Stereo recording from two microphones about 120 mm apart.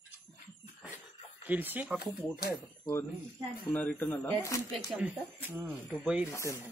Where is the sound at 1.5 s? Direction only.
15° right (ahead or behind).